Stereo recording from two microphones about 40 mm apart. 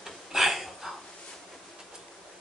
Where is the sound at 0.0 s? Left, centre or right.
Centre.